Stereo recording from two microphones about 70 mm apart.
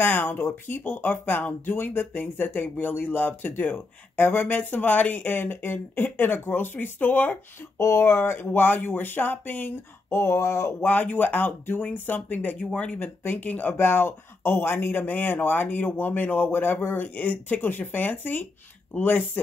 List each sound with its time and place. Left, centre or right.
0.0 s speech: left
7.8 s speech: left
10.0 s speech: left
10.9 s speech: left